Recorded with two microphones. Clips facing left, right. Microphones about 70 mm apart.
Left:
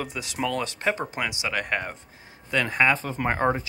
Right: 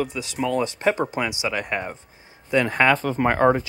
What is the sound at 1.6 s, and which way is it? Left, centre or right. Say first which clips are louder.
Speech: right 1 dB; centre.